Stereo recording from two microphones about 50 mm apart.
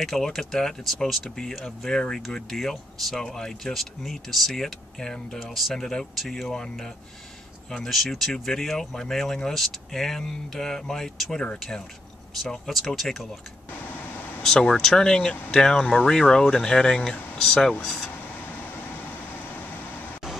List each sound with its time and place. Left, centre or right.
0.0 s speech: centre
5.4 s speech: centre
7.7 s speech: centre
12.6 s speech: centre
13.8 s a sound: left
14.4 s speech: centre
18.4 s vehicle: left